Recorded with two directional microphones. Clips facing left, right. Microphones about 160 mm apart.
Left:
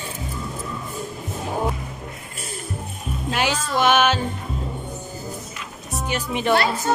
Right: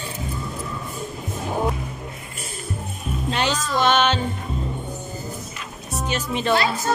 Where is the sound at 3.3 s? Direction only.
10° left (ahead or behind).